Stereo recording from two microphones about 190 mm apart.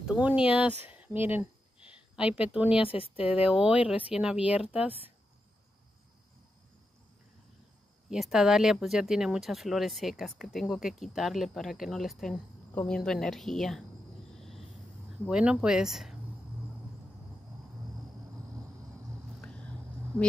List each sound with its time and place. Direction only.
0.0 s speech: 5° right (ahead or behind)
2.9 s speech: 30° left (ahead or behind)
3.3 s speech: 5° right (ahead or behind)
8.1 s speech: centre (ahead or behind)
15.2 s speech: 5° right (ahead or behind)
19.4 s vehicle: 5° left (ahead or behind)